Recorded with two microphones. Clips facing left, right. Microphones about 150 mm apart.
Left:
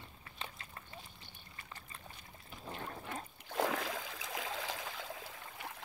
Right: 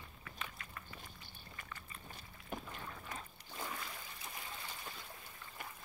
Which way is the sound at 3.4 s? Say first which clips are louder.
Left 12 dB; 90° left.